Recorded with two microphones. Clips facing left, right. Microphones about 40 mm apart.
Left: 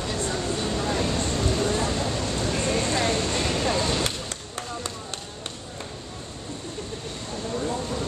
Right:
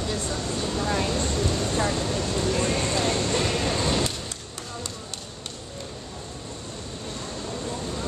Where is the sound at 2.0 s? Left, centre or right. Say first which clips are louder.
Right 1 dB; centre.